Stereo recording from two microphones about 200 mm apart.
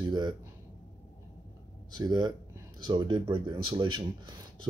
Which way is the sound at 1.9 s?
20° right (ahead or behind).